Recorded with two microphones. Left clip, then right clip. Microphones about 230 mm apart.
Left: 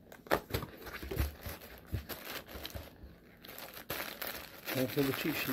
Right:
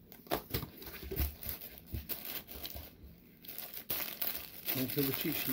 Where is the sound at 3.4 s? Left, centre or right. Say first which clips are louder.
Left 3 dB; centre.